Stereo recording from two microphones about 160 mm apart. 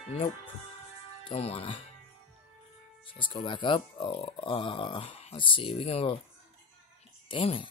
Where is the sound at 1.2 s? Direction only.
40° left (ahead or behind).